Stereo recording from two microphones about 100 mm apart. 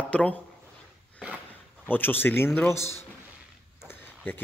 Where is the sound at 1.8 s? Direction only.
20° left (ahead or behind).